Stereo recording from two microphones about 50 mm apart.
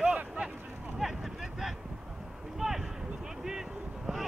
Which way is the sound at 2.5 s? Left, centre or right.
Centre.